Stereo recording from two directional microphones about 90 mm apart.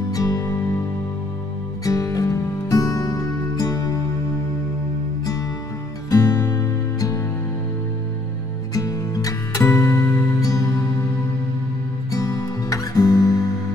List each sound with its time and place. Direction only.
0.1 s music: 40° left (ahead or behind)
1.9 s music: 40° left (ahead or behind)
6.0 s music: 40° left (ahead or behind)
8.7 s music: 40° left (ahead or behind)
12.1 s music: 40° left (ahead or behind)